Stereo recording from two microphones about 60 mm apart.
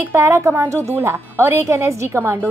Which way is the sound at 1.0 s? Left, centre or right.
Right.